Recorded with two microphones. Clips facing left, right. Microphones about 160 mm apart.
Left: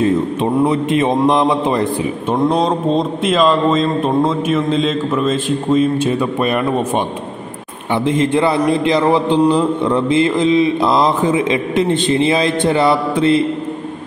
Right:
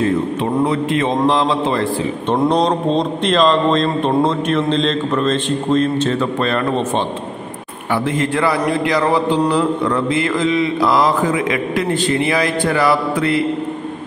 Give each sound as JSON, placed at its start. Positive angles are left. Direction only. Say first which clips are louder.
{"t": 0.7, "sound": "a man's voice", "louder": "left 2 dB", "side_deg": 20}
{"t": 2.3, "sound": "speech", "louder": "even", "side_deg": 5}
{"t": 7.9, "sound": "a man's voice", "louder": "left 3 dB", "side_deg": 20}